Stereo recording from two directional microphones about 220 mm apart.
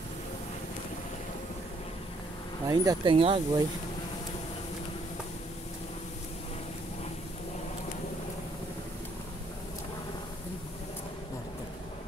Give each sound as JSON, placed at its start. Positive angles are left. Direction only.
{"t": 2.6, "sound": "speech", "side_deg": -15}